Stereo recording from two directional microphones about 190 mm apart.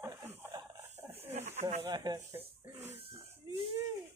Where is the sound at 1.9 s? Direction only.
20° right (ahead or behind).